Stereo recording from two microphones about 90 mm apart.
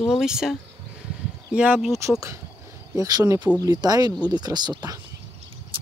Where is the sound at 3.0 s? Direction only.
45° right (ahead or behind).